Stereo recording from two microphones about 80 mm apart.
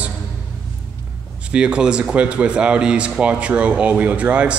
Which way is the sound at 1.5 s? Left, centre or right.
Centre.